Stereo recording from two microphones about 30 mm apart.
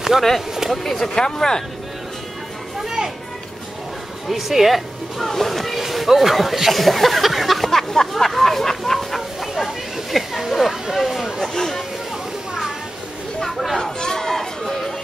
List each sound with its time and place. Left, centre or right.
0.1 s speech: centre
0.7 s speech: centre
1.1 s speech: left
2.8 s children playing: centre
4.3 s speech: centre
5.3 s speech: centre
7.7 s a sound: centre
11.4 s a sound: centre
13.9 s chatter: left